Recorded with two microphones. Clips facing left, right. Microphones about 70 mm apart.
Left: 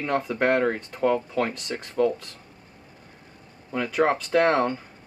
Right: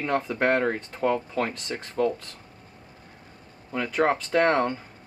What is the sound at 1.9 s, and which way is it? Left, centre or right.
Speech, centre.